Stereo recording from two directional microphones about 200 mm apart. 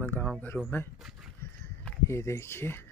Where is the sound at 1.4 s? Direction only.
10° left (ahead or behind).